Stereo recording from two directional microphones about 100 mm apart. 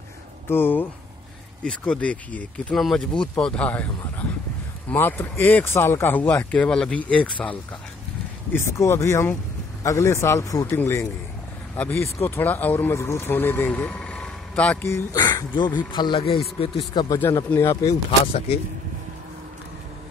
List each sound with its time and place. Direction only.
0.5 s speech: 20° left (ahead or behind)
1.6 s speech: 10° left (ahead or behind)
2.7 s speech: 5° left (ahead or behind)
8.5 s speech: 25° left (ahead or behind)
14.9 s speech: 25° left (ahead or behind)
15.5 s speech: 50° left (ahead or behind)
16.2 s speech: 70° left (ahead or behind)
17.6 s speech: 25° left (ahead or behind)
18.2 s speech: 75° left (ahead or behind)